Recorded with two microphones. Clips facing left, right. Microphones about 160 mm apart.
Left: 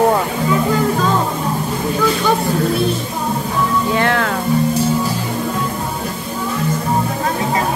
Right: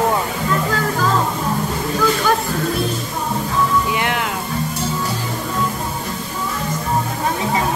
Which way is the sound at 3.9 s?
15° right (ahead or behind).